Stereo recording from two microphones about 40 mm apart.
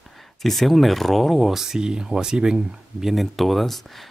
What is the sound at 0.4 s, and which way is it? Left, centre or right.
Speech, centre.